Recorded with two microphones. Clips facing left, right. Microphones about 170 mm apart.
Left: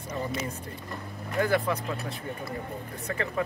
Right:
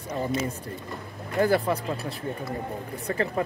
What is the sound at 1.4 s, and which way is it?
Speech, 35° right (ahead or behind).